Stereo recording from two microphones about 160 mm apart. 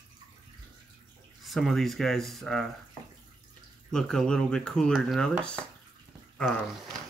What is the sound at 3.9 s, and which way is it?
Speech, 5° left (ahead or behind).